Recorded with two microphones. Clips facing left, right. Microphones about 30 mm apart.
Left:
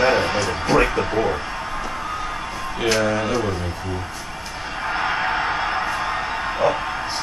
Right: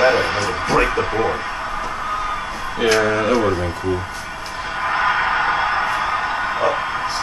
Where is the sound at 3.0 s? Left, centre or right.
Right.